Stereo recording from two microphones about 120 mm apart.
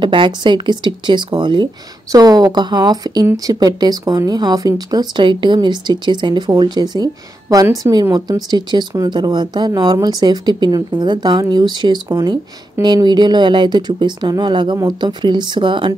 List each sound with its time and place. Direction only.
0.0 s speech: 40° right (ahead or behind)
2.1 s speech: 30° right (ahead or behind)